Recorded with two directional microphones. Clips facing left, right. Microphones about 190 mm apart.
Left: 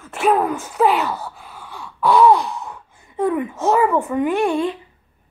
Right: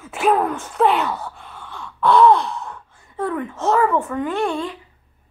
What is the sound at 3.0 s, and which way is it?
Speech, 15° left (ahead or behind).